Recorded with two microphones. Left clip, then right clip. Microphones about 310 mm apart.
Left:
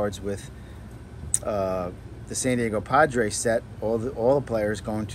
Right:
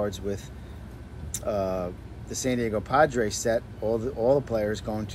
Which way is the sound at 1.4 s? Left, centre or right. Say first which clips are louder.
Left 1 dB; left.